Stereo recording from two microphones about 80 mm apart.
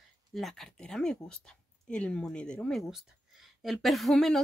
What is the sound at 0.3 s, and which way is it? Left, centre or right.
Speech, centre.